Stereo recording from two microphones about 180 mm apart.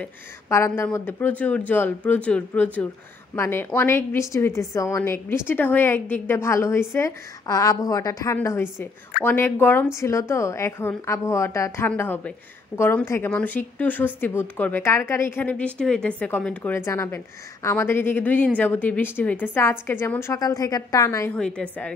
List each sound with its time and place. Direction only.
0.0 s a woman's voice: 15° left (ahead or behind)
21.4 s a woman's voice: 5° left (ahead or behind)